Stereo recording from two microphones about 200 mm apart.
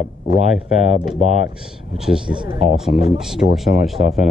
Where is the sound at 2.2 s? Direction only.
25° right (ahead or behind).